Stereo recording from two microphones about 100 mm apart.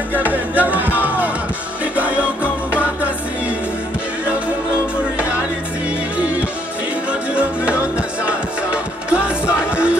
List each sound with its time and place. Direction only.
0.2 s music: 15° right (ahead or behind)
2.7 s music: 15° right (ahead or behind)
6.1 s music: 15° right (ahead or behind)